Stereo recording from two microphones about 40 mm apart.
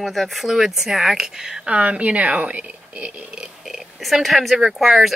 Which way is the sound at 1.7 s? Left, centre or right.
Right.